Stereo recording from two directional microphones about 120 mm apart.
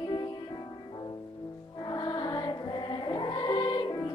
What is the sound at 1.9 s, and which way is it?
Music, 40° left (ahead or behind).